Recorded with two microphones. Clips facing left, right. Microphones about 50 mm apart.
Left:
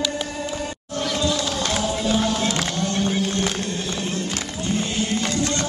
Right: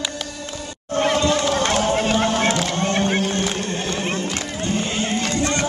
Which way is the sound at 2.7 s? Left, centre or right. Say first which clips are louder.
Right 3 dB; right.